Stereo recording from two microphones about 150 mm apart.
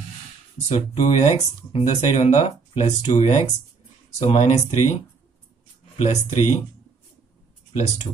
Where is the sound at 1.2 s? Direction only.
50° left (ahead or behind).